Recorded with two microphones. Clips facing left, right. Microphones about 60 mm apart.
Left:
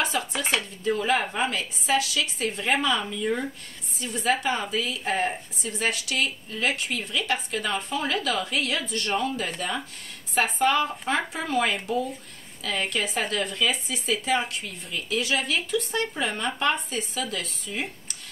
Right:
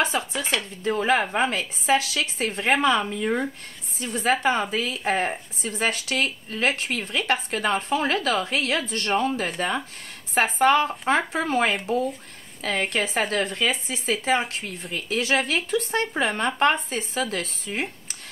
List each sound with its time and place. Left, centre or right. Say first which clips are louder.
0.0 s dishes: right 3 dB; right
0.3 s dishes: even; left
0.8 s a woman's voice: right 3 dB; right
14.7 s a woman's voice: right 1 dB; right